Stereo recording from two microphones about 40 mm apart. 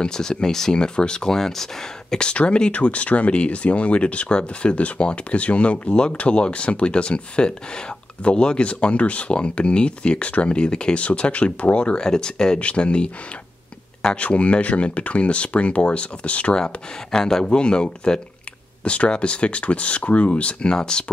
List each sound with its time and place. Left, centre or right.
0.0 s speech: centre
2.1 s speech: left
12.0 s speech: centre
12.5 s speech: left
14.1 s speech: left
16.5 s speech: left
20.7 s speech: centre